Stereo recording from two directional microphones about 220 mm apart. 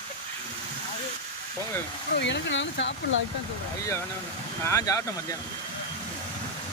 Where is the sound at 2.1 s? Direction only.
50° left (ahead or behind).